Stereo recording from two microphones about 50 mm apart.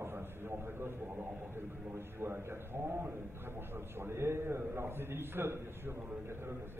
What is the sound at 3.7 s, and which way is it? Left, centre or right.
A man's voice, right.